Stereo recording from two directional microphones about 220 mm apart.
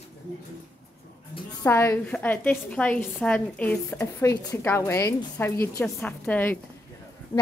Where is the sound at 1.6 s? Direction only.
10° left (ahead or behind).